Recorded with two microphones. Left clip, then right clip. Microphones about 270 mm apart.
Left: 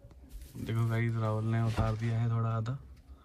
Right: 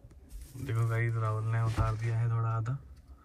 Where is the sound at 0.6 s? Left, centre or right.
Centre.